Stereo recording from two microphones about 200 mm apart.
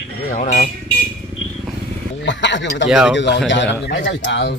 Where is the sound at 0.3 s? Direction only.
40° left (ahead or behind).